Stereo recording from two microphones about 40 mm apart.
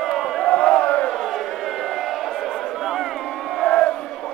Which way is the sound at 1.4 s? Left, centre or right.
Centre.